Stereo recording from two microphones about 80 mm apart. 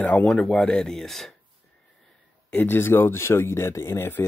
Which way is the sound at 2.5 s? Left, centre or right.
Left.